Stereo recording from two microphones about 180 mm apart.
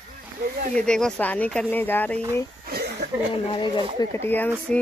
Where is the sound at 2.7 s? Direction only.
60° right (ahead or behind).